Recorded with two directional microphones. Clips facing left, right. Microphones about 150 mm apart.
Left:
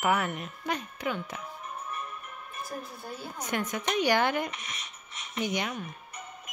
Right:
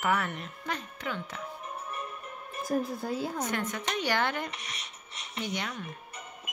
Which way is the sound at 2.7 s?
70° right (ahead or behind).